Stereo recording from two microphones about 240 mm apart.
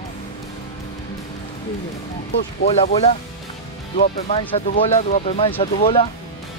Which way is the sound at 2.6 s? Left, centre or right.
Left.